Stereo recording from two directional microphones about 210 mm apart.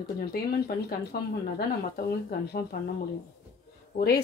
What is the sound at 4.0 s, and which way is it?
Speech, 45° left (ahead or behind).